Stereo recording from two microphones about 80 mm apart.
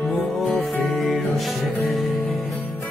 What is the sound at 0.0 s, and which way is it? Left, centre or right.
Music, centre.